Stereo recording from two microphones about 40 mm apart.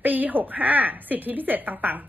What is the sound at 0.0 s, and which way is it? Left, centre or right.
A woman's voice, right.